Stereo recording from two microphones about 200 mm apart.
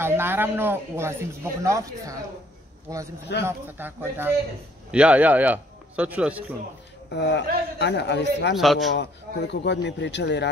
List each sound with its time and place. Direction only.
0.0 s speech: 10° right (ahead or behind)
7.1 s a man's voice: 60° left (ahead or behind)
8.5 s speech: centre (ahead or behind)
8.9 s a man's voice: 60° left (ahead or behind)